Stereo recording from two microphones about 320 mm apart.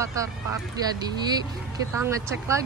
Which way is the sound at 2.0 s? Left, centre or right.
Centre.